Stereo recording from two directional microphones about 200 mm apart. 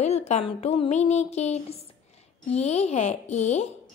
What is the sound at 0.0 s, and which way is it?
A woman's voice, 35° left (ahead or behind).